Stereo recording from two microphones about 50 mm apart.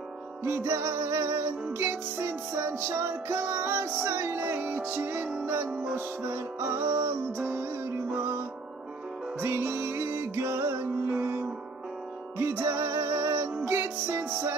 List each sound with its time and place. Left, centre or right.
0.4 s music: right
5.9 s music: right
9.4 s music: right